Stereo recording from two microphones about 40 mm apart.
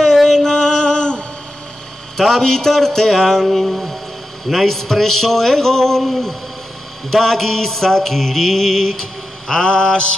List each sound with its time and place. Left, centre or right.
0.0 s a sound: centre
2.1 s a man's voice: centre
3.4 s mantra: centre
4.5 s a man's voice: centre
9.5 s mantra: left